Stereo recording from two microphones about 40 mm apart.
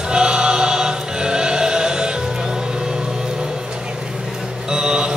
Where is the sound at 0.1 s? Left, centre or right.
Right.